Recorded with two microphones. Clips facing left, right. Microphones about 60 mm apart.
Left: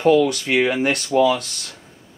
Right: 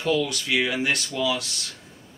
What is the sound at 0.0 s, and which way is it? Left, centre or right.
Speech, left.